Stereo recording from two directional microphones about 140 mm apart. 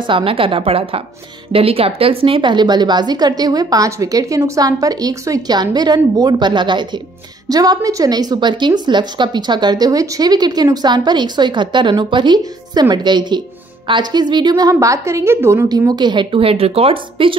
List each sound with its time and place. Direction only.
0.0 s a woman's voice: 40° right (ahead or behind)